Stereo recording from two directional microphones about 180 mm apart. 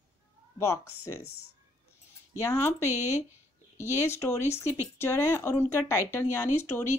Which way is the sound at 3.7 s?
15° left (ahead or behind).